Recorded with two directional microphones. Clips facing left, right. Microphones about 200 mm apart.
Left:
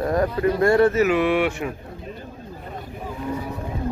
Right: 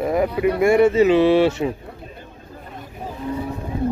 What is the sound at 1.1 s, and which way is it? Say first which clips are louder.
Speech: right 5 dB; 30° right (ahead or behind).